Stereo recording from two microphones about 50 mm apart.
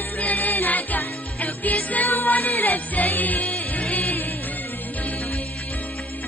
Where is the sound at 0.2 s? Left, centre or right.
Left.